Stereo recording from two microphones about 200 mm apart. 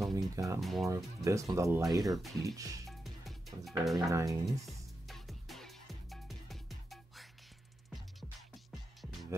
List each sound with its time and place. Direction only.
0.1 s music: 15° right (ahead or behind)
0.6 s speech: centre (ahead or behind)
0.8 s speech: 15° right (ahead or behind)
1.9 s speech: centre (ahead or behind)
2.4 s speech: 15° right (ahead or behind)
2.9 s music: centre (ahead or behind)
4.1 s speech: 15° right (ahead or behind)
4.6 s music: centre (ahead or behind)